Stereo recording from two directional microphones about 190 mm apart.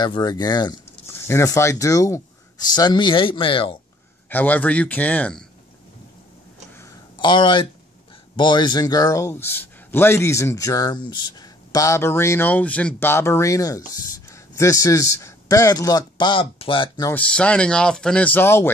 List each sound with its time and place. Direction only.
0.0 s speech: 20° left (ahead or behind)
4.3 s a man's voice: 10° left (ahead or behind)
6.7 s a sound: 15° left (ahead or behind)
8.4 s a man's voice: 25° left (ahead or behind)
17.1 s speech: 5° left (ahead or behind)